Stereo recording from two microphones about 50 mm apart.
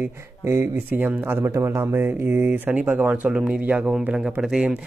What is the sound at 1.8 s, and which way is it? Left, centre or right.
Speech, right.